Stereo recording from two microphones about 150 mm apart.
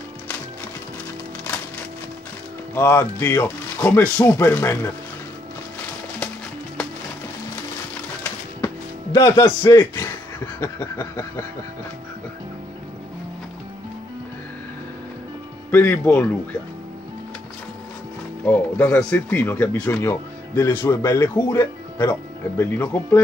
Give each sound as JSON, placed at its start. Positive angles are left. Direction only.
{"t": 2.7, "sound": "speech", "side_deg": 15}
{"t": 8.2, "sound": "music", "side_deg": 15}
{"t": 15.7, "sound": "speech", "side_deg": 10}
{"t": 18.4, "sound": "speech", "side_deg": 10}